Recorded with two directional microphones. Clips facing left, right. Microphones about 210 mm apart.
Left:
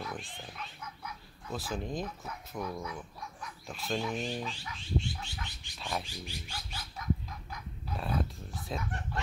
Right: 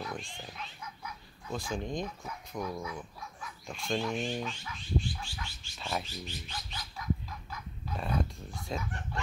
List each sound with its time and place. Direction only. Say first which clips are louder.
0.0 s speech: right 1 dB; 5° left (ahead or behind)
4.5 s a sound: right 1 dB; 25° left (ahead or behind)
5.8 s speech: right 1 dB; centre (ahead or behind)
6.0 s bird: right 1 dB; 10° left (ahead or behind)
7.9 s speech: right 1 dB; centre (ahead or behind)